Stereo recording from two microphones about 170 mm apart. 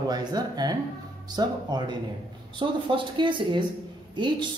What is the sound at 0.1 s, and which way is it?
Speech, 25° right (ahead or behind).